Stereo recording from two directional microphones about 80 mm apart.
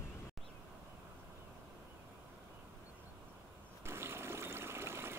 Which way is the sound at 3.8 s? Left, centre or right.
Right.